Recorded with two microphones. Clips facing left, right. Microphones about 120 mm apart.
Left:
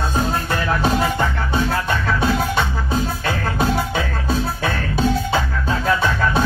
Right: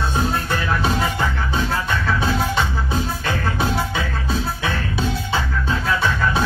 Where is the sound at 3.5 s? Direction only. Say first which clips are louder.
Left 2 dB; 45° left (ahead or behind).